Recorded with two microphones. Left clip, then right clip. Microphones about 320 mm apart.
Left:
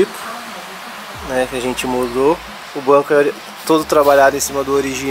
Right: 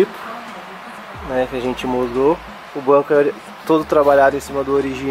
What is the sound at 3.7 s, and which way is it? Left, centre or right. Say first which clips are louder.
Speech: left 2 dB; centre.